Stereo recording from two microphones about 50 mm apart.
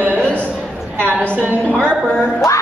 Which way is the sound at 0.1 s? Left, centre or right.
Left.